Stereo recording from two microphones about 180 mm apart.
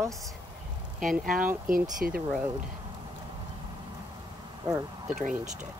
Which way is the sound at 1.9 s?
55° right (ahead or behind).